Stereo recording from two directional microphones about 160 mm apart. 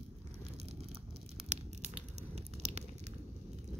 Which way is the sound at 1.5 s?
45° right (ahead or behind).